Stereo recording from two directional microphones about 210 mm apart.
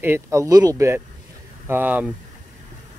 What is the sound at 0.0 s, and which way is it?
Speech, 10° right (ahead or behind).